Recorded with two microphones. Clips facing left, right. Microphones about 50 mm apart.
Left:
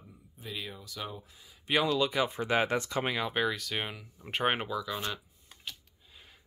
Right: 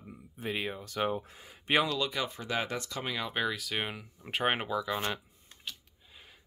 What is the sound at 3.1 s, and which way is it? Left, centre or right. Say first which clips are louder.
Speech: even; centre.